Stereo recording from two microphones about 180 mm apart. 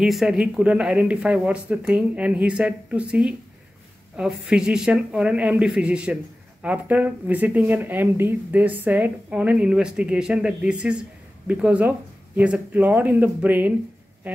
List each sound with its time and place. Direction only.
0.0 s speech: centre (ahead or behind)